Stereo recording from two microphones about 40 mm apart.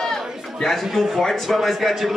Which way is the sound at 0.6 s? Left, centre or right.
Centre.